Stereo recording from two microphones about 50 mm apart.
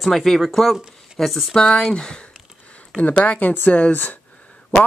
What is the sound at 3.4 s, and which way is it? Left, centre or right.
Speech, left.